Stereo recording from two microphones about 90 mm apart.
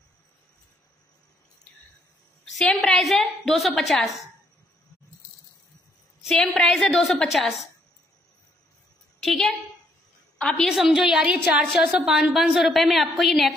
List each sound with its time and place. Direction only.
2.6 s a woman's voice: 5° left (ahead or behind)
6.2 s a woman's voice: 10° left (ahead or behind)
9.2 s a woman's voice: 5° left (ahead or behind)
10.6 s a woman's voice: 5° right (ahead or behind)